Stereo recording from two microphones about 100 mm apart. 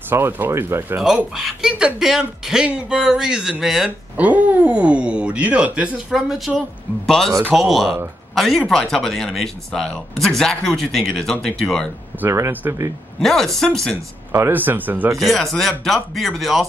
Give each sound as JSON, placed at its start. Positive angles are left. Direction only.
{"t": 0.1, "sound": "speech", "side_deg": -20}
{"t": 0.9, "sound": "speech", "side_deg": -5}
{"t": 4.2, "sound": "speech", "side_deg": -15}
{"t": 6.1, "sound": "speech", "side_deg": 0}
{"t": 12.3, "sound": "speech", "side_deg": -30}
{"t": 13.2, "sound": "speech", "side_deg": 5}
{"t": 14.3, "sound": "speech", "side_deg": -25}
{"t": 15.1, "sound": "speech", "side_deg": 0}